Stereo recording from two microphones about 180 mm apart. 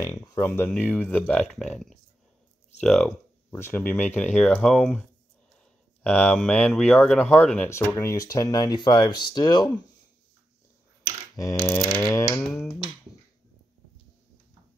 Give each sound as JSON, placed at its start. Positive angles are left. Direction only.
{"t": 0.0, "sound": "speech", "side_deg": 20}
{"t": 0.5, "sound": "speech", "side_deg": 5}
{"t": 6.0, "sound": "speech", "side_deg": 10}
{"t": 11.9, "sound": "speech", "side_deg": 5}